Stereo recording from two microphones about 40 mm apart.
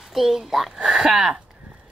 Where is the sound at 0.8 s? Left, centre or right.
Centre.